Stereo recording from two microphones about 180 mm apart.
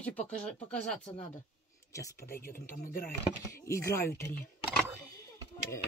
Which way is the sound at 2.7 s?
50° left (ahead or behind).